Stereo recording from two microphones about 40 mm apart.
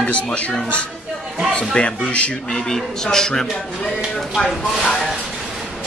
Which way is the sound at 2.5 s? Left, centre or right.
Centre.